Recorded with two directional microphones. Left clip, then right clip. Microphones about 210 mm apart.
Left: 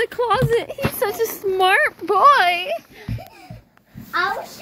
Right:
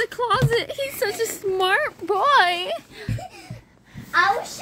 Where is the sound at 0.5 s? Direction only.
10° right (ahead or behind).